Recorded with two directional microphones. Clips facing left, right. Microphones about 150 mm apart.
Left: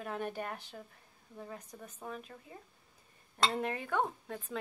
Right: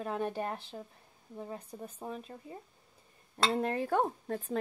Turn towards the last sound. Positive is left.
turn(degrees=-40)  # may be behind; listen again after turning